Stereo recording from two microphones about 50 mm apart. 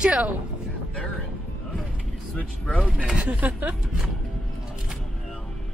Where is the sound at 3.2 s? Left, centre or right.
Right.